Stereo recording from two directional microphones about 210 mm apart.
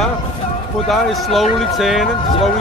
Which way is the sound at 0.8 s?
Centre (ahead or behind).